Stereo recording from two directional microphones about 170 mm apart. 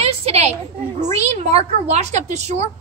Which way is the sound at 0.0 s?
35° right (ahead or behind).